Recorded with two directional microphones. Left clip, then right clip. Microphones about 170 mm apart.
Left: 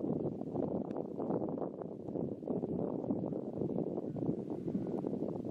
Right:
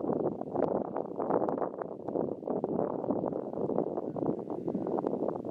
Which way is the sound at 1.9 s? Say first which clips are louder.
Right 7 dB; 35° right (ahead or behind).